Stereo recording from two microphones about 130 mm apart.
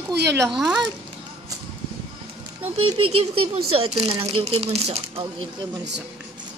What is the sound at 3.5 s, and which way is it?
Speech, 50° right (ahead or behind).